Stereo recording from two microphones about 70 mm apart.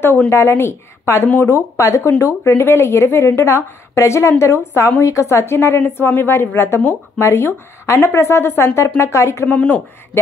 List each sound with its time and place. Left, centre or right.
0.3 s speech: left
1.8 s speech: left
9.5 s speech: left